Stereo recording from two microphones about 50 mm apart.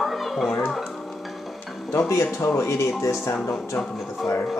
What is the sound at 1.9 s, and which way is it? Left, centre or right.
Speech, left.